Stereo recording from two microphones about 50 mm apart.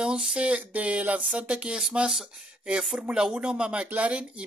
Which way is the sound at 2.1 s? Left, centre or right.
Centre.